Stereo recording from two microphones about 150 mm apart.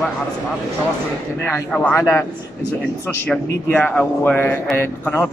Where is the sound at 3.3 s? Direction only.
10° left (ahead or behind).